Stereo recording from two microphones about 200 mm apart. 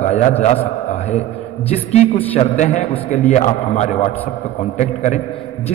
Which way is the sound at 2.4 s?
30° left (ahead or behind).